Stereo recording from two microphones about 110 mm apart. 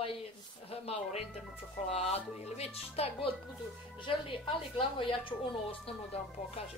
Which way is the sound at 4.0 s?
55° left (ahead or behind).